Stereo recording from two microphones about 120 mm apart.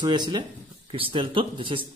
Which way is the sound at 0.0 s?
40° right (ahead or behind).